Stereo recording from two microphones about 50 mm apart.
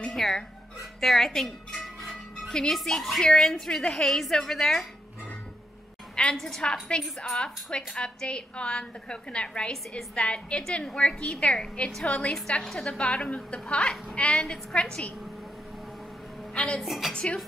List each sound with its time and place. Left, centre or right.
0.1 s speech: centre
1.0 s music: centre
2.7 s a woman's voice: centre
6.3 s a woman's voice: centre
16.5 s a woman's voice: left
16.8 s speech: centre
17.1 s a woman's voice: left